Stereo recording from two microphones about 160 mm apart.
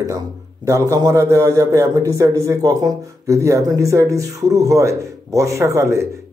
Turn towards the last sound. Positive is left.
turn(degrees=-20)  # may be behind; listen again after turning